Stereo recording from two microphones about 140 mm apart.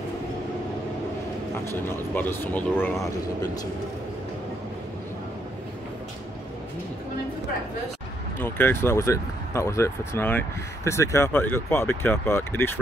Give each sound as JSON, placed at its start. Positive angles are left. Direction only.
{"t": 1.6, "sound": "speech", "side_deg": 20}
{"t": 8.4, "sound": "speech", "side_deg": 15}